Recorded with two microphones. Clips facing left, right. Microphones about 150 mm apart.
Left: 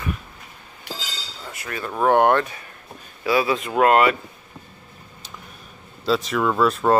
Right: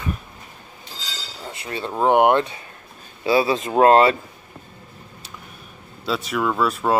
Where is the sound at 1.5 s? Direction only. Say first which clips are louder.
Right 2 dB; 25° right (ahead or behind).